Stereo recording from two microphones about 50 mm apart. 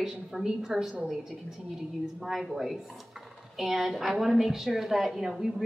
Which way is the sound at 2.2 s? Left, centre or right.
Centre.